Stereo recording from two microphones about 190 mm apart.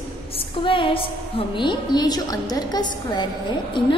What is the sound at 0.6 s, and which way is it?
A woman's voice, 25° left (ahead or behind).